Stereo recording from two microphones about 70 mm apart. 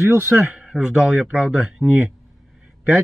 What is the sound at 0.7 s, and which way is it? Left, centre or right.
Speech, centre.